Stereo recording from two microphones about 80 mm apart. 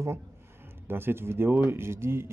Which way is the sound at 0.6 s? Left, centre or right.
Right.